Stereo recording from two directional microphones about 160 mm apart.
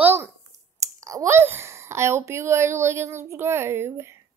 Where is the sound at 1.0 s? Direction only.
20° right (ahead or behind).